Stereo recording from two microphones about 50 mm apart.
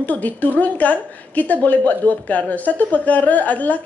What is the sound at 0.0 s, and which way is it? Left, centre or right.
A woman's voice, left.